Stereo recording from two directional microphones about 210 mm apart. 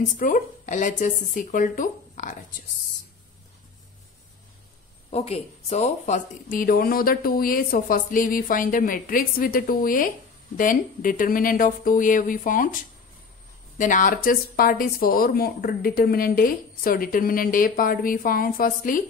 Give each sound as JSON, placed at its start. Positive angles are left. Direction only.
{"t": 0.2, "sound": "speech", "side_deg": 40}
{"t": 5.1, "sound": "speech", "side_deg": 30}
{"t": 13.7, "sound": "speech", "side_deg": 40}